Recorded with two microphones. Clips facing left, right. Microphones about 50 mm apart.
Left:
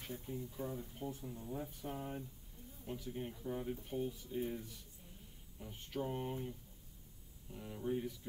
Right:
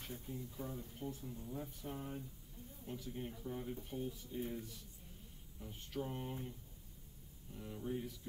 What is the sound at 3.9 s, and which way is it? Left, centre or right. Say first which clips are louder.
A man's voice: left 4 dB; centre.